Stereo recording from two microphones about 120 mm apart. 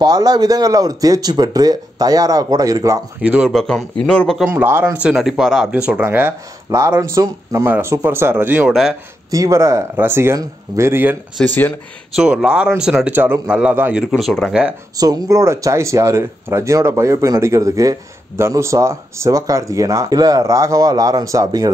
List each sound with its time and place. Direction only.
0.0 s speech: 35° right (ahead or behind)
3.2 s speech: 10° right (ahead or behind)
3.5 s a man's voice: 5° left (ahead or behind)
4.5 s speech: 20° right (ahead or behind)
5.1 s speech: 5° right (ahead or behind)
6.7 s speech: 25° right (ahead or behind); by 8.9 s 5° right (ahead or behind)
9.3 s speech: 30° right (ahead or behind)
11.3 s a man's voice: 10° left (ahead or behind)
12.2 s speech: 5° right (ahead or behind)
12.9 s speech: 15° right (ahead or behind)
14.1 s speech: centre (ahead or behind)
15.0 s speech: 30° right (ahead or behind)